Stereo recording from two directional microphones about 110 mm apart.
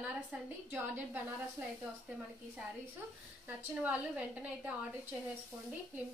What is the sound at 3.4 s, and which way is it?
A woman's voice, 15° right (ahead or behind).